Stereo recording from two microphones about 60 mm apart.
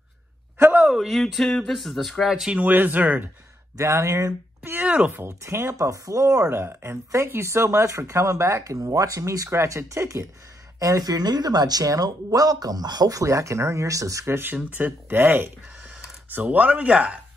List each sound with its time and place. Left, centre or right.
0.6 s a sound: right
0.9 s speech: centre
2.5 s speech: right
3.7 s speech: right
4.8 s speech: right
5.4 s speech: right
5.8 s speech: right
9.5 s speech: right
10.8 s speech: right
14.2 s speech: right